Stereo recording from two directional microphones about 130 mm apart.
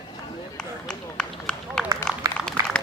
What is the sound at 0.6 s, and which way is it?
Run, 5° left (ahead or behind).